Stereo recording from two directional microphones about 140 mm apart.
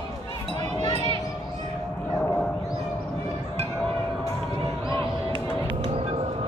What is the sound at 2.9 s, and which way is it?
Music, 15° left (ahead or behind).